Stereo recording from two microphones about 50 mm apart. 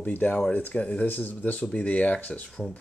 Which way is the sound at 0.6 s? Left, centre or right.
Left.